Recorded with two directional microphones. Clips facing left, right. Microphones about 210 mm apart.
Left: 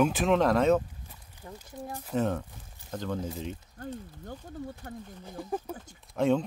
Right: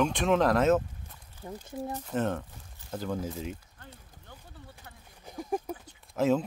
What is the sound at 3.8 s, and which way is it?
Speech, 45° left (ahead or behind).